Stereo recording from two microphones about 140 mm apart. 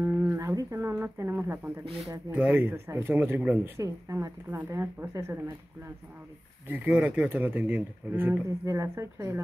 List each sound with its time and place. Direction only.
0.0 s music: 15° right (ahead or behind)
2.3 s speech: 15° right (ahead or behind)
6.7 s speech: 10° right (ahead or behind)